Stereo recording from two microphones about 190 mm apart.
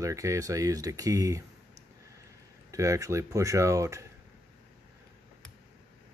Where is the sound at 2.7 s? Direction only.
15° right (ahead or behind).